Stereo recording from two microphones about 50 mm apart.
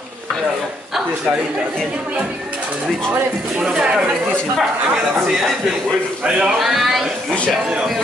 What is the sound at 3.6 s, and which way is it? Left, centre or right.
Speech, right.